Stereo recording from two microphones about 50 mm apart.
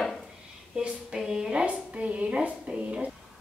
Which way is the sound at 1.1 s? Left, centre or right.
Centre.